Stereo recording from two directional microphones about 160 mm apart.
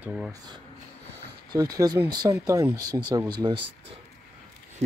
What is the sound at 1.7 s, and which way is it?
Speech, 25° right (ahead or behind).